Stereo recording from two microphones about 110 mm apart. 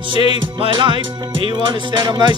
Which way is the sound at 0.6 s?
50° right (ahead or behind).